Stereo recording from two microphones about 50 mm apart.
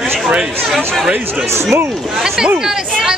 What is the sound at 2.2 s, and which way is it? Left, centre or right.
Speech, centre.